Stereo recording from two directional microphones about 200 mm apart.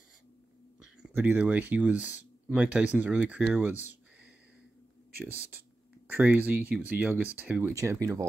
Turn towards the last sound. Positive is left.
turn(degrees=-15)  # may be behind; listen again after turning